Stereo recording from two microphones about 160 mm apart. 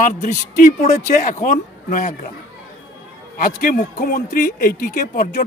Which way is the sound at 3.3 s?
65° left (ahead or behind).